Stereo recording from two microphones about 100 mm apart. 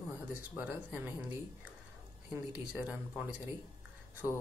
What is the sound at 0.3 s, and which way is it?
Speech, 20° right (ahead or behind).